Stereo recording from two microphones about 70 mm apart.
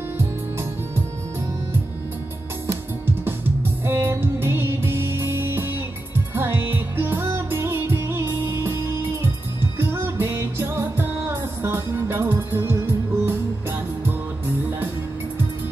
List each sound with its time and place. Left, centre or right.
3.8 s music: right